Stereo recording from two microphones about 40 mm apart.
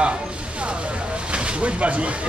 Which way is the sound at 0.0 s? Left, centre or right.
Right.